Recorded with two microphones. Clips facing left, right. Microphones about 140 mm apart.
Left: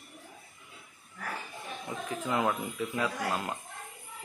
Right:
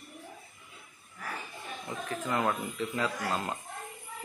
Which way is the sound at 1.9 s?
15° left (ahead or behind).